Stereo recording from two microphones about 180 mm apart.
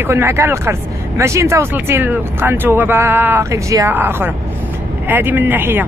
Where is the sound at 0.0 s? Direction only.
15° right (ahead or behind).